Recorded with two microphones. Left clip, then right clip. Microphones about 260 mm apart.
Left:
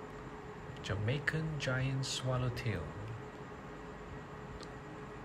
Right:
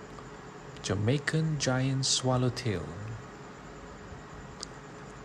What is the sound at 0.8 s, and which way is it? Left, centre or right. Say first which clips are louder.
Speech: right 6 dB; centre.